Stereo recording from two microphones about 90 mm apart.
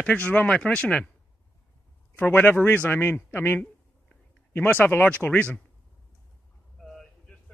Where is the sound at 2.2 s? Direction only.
20° left (ahead or behind).